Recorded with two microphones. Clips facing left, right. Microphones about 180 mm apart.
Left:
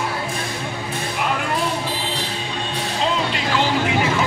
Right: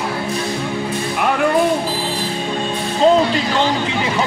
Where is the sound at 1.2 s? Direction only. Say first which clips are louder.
Right 8 dB; 60° right (ahead or behind).